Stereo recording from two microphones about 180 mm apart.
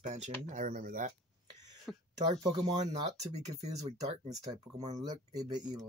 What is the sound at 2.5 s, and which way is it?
Speech, 40° right (ahead or behind).